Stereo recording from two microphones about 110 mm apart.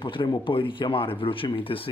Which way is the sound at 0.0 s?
50° left (ahead or behind).